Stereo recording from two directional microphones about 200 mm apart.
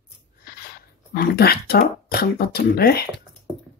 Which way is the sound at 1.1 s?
50° left (ahead or behind).